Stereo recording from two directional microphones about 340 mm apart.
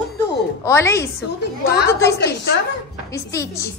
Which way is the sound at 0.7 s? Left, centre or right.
Centre.